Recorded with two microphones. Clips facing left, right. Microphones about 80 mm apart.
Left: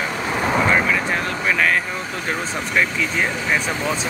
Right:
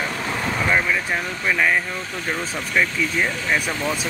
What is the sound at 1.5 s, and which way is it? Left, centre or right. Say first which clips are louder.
Vehicle: even; centre.